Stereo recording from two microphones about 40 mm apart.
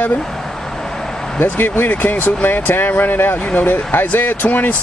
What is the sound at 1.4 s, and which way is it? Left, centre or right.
Speech, left.